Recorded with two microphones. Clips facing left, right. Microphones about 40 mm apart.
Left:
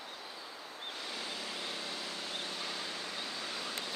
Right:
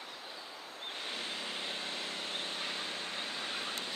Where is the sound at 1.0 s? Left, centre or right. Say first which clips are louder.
Right 2 dB; right.